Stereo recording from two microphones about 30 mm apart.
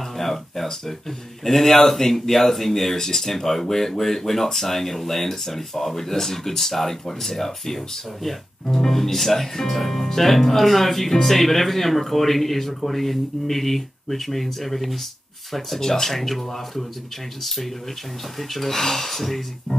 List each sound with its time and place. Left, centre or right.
0.0 s a sound: centre
0.7 s speech: centre
15.8 s speech: centre
19.7 s music: left